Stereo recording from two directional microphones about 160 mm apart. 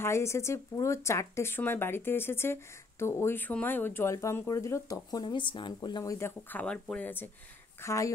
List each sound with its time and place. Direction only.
0.0 s speech: 15° left (ahead or behind)
6.1 s speech: 15° left (ahead or behind)